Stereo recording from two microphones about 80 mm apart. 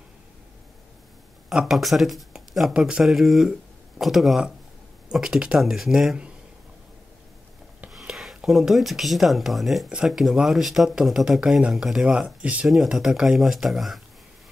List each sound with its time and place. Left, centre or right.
1.5 s speech: centre
7.9 s a sound: centre
8.5 s speech: centre
12.9 s speech: centre